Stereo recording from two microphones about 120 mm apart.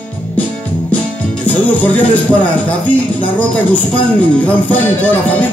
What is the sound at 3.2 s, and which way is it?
Speech, 15° left (ahead or behind).